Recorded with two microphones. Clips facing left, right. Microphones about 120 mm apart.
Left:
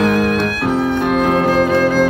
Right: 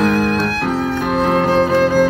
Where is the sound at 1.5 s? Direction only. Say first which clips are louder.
Even; 30° right (ahead or behind).